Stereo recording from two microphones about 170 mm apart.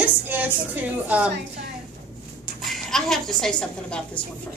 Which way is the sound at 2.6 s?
Centre (ahead or behind).